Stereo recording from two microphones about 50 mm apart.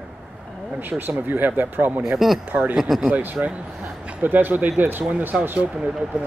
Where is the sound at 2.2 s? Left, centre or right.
Centre.